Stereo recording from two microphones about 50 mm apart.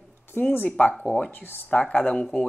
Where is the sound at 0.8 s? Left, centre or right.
Left.